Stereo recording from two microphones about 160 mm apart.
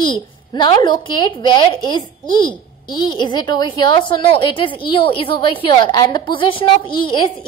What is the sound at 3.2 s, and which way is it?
A woman's voice, 30° left (ahead or behind).